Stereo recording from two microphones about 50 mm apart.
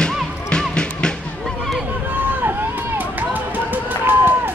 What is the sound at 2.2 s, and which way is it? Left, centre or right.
Run, right.